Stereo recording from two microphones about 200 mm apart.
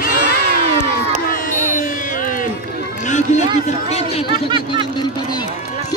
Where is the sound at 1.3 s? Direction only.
45° left (ahead or behind).